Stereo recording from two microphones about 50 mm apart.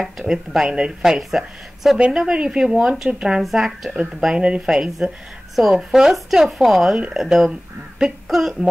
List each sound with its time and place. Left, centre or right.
0.3 s a woman's voice: centre
2.1 s a woman's voice: centre
3.4 s speech: centre
4.2 s a woman's voice: centre